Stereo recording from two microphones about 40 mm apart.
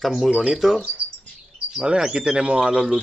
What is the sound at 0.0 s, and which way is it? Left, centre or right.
Speech, centre.